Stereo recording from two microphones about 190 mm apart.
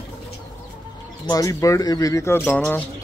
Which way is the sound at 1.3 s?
15° left (ahead or behind).